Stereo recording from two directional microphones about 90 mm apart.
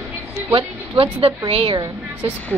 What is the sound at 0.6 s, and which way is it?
A woman's voice, 80° right.